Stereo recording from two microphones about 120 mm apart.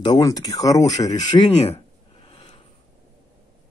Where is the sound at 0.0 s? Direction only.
35° left (ahead or behind).